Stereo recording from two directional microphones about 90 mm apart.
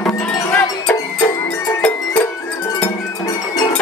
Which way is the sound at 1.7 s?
15° left (ahead or behind).